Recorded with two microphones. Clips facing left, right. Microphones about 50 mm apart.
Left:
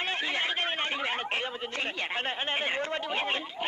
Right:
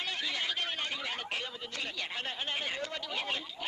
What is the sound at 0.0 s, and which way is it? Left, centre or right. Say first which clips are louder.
Speech: left 5 dB; left.